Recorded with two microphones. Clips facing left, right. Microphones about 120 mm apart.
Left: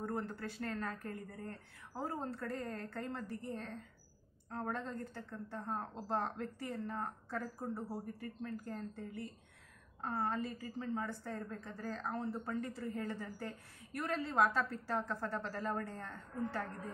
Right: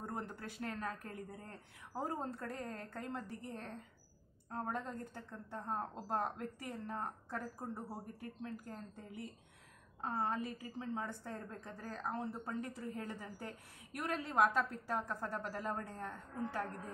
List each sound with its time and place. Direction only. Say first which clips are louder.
0.0 s a woman's voice: left 4 dB; 15° right (ahead or behind)
4.5 s a woman's voice: left 1 dB; 15° right (ahead or behind)